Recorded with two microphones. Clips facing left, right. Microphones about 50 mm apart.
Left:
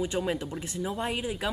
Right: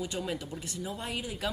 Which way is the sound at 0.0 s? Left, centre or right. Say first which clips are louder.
Left 5 dB; left.